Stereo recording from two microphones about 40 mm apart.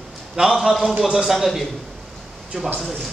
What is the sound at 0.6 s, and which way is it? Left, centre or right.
A man's voice, centre.